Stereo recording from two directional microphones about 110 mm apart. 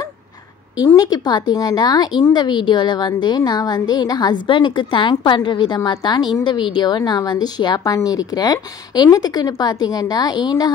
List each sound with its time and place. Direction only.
0.9 s a woman's voice: 40° left (ahead or behind)